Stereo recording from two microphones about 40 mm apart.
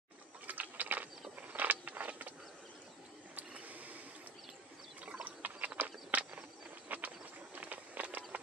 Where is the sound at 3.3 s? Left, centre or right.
Right.